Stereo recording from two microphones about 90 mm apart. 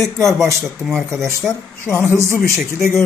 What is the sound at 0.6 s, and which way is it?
Speech, 5° left (ahead or behind).